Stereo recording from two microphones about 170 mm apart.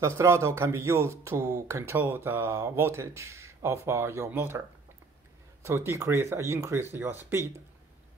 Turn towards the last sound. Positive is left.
turn(degrees=-15)  # may be behind; listen again after turning